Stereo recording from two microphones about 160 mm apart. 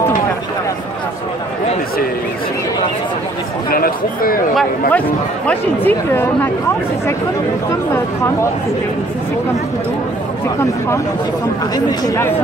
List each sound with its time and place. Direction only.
3.7 s speech: 65° left (ahead or behind)
5.5 s speech: 10° left (ahead or behind)
7.7 s speech: 20° left (ahead or behind)
11.7 s speech: 20° left (ahead or behind)